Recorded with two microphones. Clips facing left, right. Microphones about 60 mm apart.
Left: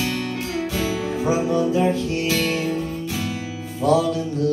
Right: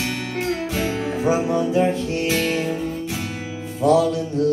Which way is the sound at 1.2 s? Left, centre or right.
Right.